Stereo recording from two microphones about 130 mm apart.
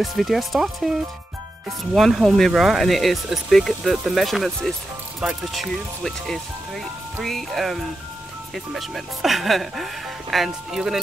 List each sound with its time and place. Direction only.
0.0 s speech: centre (ahead or behind)
2.0 s speech: centre (ahead or behind)